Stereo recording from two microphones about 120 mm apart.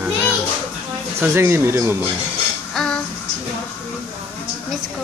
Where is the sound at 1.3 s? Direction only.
20° right (ahead or behind).